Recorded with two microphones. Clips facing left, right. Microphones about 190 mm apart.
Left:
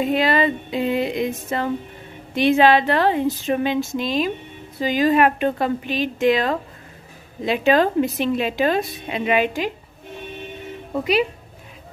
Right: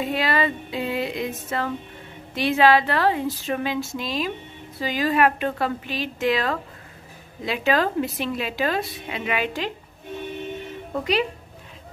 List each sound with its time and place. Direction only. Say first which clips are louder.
0.0 s a woman's voice: left 5 dB; 20° left (ahead or behind)